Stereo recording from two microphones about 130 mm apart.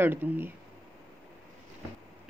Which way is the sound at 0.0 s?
15° right (ahead or behind).